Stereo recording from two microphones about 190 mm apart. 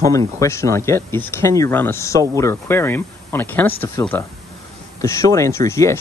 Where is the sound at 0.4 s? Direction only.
15° left (ahead or behind).